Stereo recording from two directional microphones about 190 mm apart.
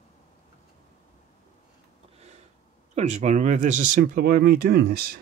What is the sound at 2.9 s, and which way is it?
Speech, 35° right (ahead or behind).